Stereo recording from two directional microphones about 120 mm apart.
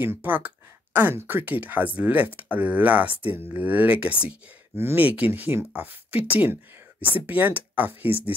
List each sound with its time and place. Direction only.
0.0 s speech: 20° right (ahead or behind)